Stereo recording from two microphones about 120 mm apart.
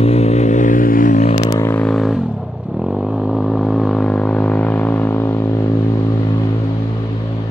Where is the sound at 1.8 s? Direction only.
Centre (ahead or behind); by 6.4 s 30° left (ahead or behind).